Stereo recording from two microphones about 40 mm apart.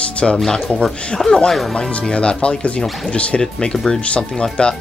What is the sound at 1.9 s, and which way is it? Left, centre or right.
Music, left.